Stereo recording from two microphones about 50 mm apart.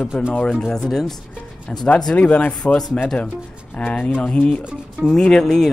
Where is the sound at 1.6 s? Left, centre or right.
Left.